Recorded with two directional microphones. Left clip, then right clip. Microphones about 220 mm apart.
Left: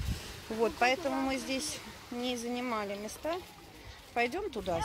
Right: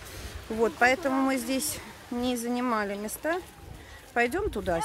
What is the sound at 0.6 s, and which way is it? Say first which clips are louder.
Speech: right 5 dB; 15° right (ahead or behind).